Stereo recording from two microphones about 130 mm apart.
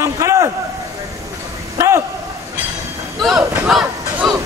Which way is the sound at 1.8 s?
25° right (ahead or behind).